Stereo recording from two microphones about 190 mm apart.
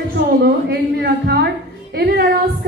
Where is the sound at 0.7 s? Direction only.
55° right (ahead or behind).